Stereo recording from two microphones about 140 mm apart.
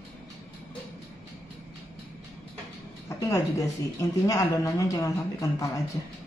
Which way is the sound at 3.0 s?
25° left (ahead or behind).